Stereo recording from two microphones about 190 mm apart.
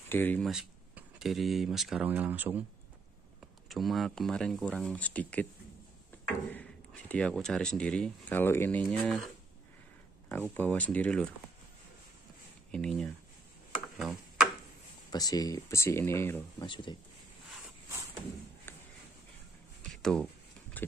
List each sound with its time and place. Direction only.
0.1 s speech: 10° left (ahead or behind)
0.5 s speech: 5° right (ahead or behind)
3.6 s speech: centre (ahead or behind)
6.5 s speech: 5° left (ahead or behind)
10.3 s speech: 10° left (ahead or behind)
12.7 s speech: 5° left (ahead or behind)
13.9 s tick-tock: centre (ahead or behind)
15.0 s speech: 20° left (ahead or behind)
16.6 s speech: 25° left (ahead or behind)
18.7 s a sound: 10° left (ahead or behind)
19.9 s a sound: 5° left (ahead or behind)